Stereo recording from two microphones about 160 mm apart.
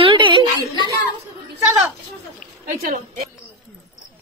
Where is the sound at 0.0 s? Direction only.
30° right (ahead or behind).